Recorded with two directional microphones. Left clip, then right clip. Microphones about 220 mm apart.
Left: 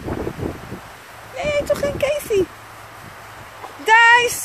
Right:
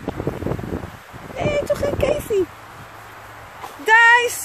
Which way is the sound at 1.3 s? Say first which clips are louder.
Left 1 dB; centre (ahead or behind).